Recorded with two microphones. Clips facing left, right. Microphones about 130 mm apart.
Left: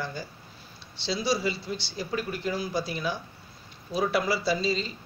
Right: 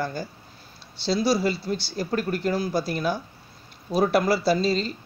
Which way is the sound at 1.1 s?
5° right (ahead or behind).